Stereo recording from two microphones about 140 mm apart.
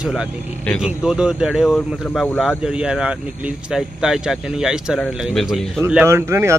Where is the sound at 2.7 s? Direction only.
5° right (ahead or behind).